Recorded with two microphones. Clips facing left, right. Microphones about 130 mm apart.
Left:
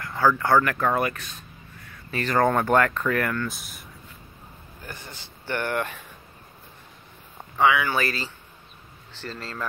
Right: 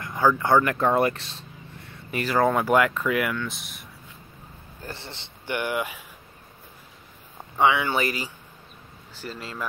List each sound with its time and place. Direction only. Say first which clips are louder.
0.0 s a sound: even; 20° right (ahead or behind)
2.1 s speech: even; 5° right (ahead or behind)
4.8 s speech: right 2 dB; 30° right (ahead or behind)
5.5 s speech: even; 10° right (ahead or behind)
7.5 s speech: even; 25° right (ahead or behind)